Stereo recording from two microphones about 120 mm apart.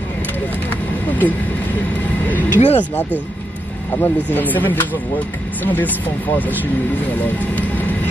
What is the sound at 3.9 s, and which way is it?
Speech, 15° left (ahead or behind).